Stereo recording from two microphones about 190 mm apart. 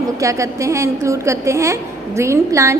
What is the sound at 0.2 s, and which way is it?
A woman's voice, 15° right (ahead or behind).